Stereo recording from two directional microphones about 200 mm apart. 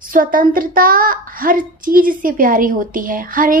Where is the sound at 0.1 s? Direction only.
45° right (ahead or behind).